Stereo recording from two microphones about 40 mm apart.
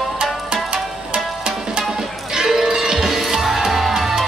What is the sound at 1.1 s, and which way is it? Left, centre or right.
Music, centre.